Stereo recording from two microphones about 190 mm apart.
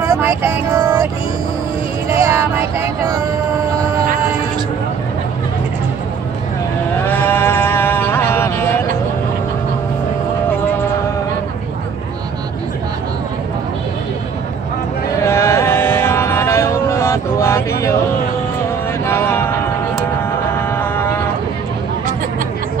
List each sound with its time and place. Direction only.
0.0 s vehicle: 15° right (ahead or behind)
2.1 s music: 15° right (ahead or behind)
7.1 s sheep: 10° left (ahead or behind)
15.1 s a sound: 15° left (ahead or behind)
19.0 s a sound: 10° left (ahead or behind)
20.7 s livestock: 10° left (ahead or behind)